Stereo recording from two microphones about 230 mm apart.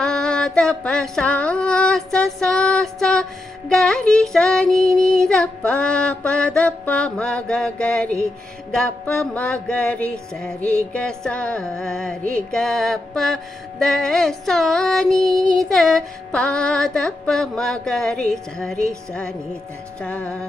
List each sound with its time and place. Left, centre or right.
0.0 s female singing: centre
5.3 s music: centre
15.1 s child singing: centre
15.7 s music: centre
20.0 s music: centre